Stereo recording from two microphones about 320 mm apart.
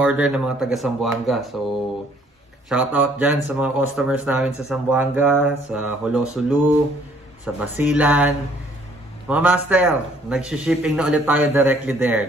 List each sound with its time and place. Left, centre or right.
0.0 s a man's voice: centre
2.7 s a man's voice: centre
9.3 s a man's voice: centre